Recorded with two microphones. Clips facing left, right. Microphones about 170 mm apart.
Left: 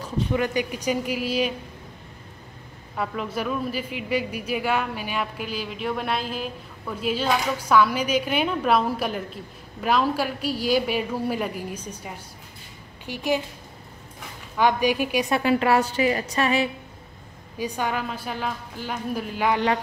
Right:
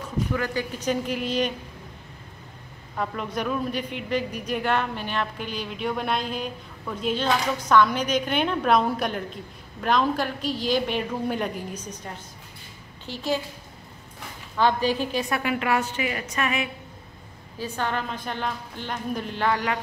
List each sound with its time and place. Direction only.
0.3 s a woman's voice: 20° left (ahead or behind)
3.0 s a woman's voice: 5° left (ahead or behind)
14.6 s a woman's voice: 15° left (ahead or behind); by 16.6 s 30° left (ahead or behind)
17.6 s a woman's voice: 15° left (ahead or behind)